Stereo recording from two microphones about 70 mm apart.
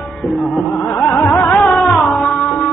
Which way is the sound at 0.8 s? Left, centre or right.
Left.